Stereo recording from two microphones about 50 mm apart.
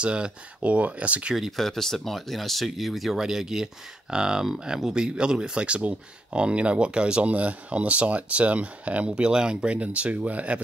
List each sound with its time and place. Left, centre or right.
0.0 s speech: right
1.3 s speech: centre
1.7 s speech: centre; by 10.6 s right